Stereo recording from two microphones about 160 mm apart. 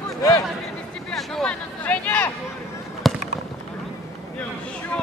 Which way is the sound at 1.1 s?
Centre (ahead or behind).